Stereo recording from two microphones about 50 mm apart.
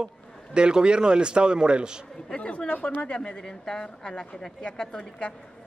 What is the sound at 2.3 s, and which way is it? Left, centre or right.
A man's voice, left.